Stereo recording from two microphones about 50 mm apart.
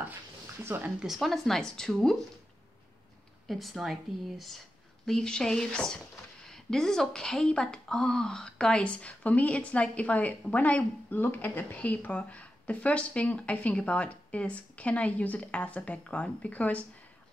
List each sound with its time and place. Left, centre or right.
0.7 s speech: right
1.0 s speech: centre
3.4 s speech: centre
5.0 s a woman's voice: centre; by 16.8 s left